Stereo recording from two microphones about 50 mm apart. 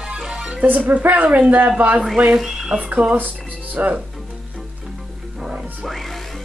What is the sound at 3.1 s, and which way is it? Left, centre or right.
Speech, right.